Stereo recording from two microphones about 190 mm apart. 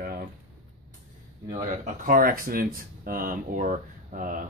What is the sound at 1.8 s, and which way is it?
Speech, 45° right (ahead or behind).